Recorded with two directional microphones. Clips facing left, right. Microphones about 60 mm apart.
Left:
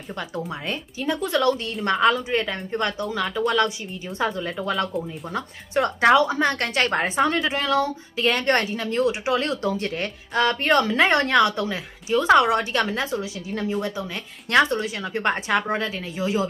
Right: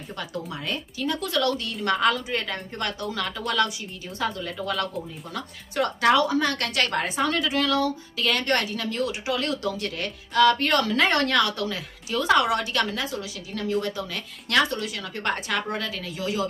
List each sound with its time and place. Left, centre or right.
0.9 s speech: left
4.2 s speech: left